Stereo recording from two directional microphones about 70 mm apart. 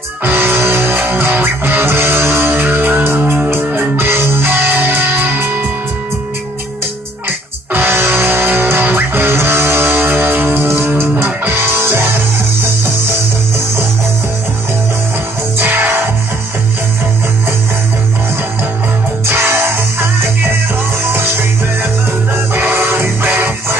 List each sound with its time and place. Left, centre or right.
0.2 s music: right
7.7 s music: right
15.5 s music: right
19.2 s music: right
22.5 s music: right